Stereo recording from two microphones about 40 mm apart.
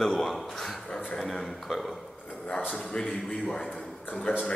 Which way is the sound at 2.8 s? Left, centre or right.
Centre.